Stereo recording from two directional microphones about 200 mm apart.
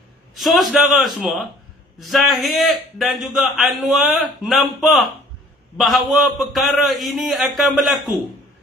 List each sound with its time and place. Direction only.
0.4 s a man's voice: centre (ahead or behind)